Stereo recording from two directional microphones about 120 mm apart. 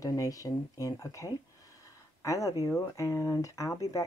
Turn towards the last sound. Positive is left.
turn(degrees=30)  # may be behind; listen again after turning